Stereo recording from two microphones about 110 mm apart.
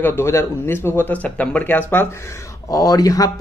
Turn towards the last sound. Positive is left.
turn(degrees=35)  # may be behind; listen again after turning